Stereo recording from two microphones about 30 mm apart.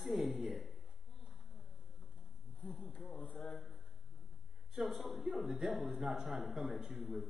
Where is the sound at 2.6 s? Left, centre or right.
Left.